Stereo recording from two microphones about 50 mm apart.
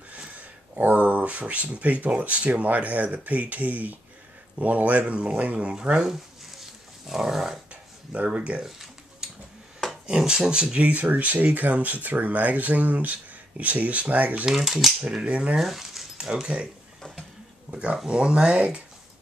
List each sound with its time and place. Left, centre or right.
0.7 s speech: right
6.6 s dog: centre
8.1 s speech: right
8.6 s a sound: centre
10.0 s speech: centre
10.9 s speech: right
14.4 s speech: centre
15.0 s speech: right
15.5 s speech: centre
16.2 s speech: centre
17.6 s speech: right